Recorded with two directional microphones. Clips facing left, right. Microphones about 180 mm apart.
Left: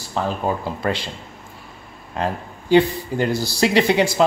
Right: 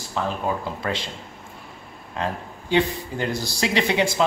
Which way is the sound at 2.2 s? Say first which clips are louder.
Left 3 dB; 35° left (ahead or behind).